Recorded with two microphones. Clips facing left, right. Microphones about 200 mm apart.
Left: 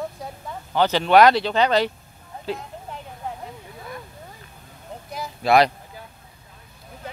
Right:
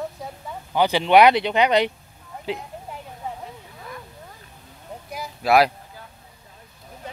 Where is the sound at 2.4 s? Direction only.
15° right (ahead or behind).